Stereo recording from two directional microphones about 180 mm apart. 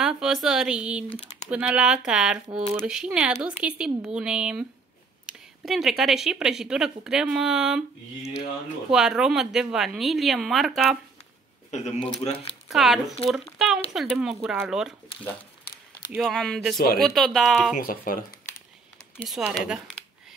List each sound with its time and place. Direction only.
0.0 s speech: 5° right (ahead or behind)
8.9 s speech: 5° right (ahead or behind)
12.2 s speech: 30° left (ahead or behind)
12.6 s speech: centre (ahead or behind)
16.2 s speech: centre (ahead or behind)
16.7 s speech: 60° left (ahead or behind)
17.0 s speech: centre (ahead or behind)
17.7 s speech: 50° left (ahead or behind)
19.2 s speech: centre (ahead or behind)